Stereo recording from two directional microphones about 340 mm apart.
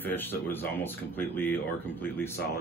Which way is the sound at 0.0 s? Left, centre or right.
Centre.